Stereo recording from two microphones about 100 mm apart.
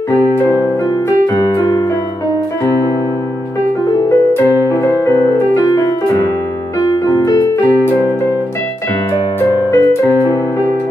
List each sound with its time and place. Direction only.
0.1 s music: 30° left (ahead or behind)
1.2 s keyboard: 30° left (ahead or behind)
4.6 s music: 30° left (ahead or behind)
7.1 s keyboard: 40° left (ahead or behind)
9.1 s music: 35° left (ahead or behind)